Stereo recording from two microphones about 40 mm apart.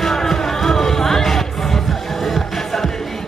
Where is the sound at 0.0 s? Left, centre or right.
Centre.